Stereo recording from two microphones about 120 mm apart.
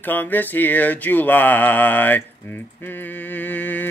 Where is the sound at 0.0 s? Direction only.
15° left (ahead or behind).